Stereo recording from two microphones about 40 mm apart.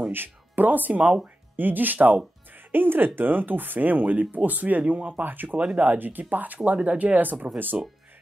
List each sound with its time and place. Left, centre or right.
0.1 s speech: right